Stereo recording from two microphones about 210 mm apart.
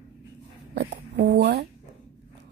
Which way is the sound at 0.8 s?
55° right (ahead or behind).